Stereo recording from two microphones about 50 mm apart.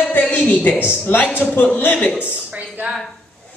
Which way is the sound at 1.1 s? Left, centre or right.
Left.